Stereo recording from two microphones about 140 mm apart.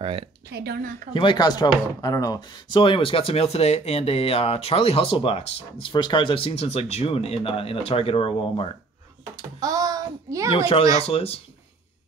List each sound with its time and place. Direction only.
1.1 s speech: 35° left (ahead or behind)
9.4 s a sound: 25° right (ahead or behind)
11.1 s speech: 45° left (ahead or behind)